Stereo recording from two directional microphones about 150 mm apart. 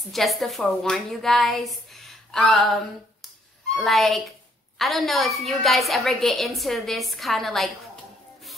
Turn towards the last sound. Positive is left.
turn(degrees=0)  # may be behind; listen again after turning